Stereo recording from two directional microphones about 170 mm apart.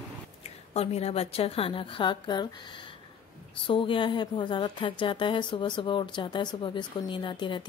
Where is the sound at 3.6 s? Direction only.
30° left (ahead or behind).